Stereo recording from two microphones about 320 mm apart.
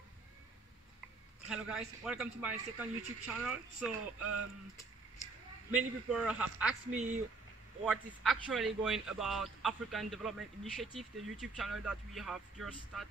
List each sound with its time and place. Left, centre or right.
1.5 s speech: centre
4.2 s speech: right
5.7 s speech: centre
7.8 s speech: centre